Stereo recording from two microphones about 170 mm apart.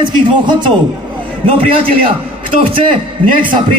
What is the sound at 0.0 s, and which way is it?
A man's voice, 25° right (ahead or behind).